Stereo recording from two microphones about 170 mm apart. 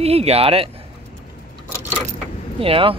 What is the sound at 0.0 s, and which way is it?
Speech, 35° right (ahead or behind).